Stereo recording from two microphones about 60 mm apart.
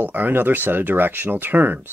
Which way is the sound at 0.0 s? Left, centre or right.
Right.